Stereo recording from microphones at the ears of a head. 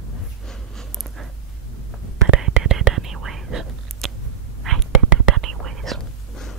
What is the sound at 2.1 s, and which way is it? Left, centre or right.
Whispering, right.